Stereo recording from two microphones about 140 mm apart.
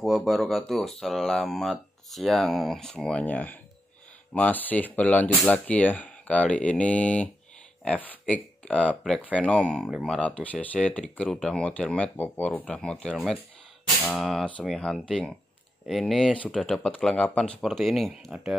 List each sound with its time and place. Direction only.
0.0 s speech: centre (ahead or behind)
13.1 s speech: 5° right (ahead or behind)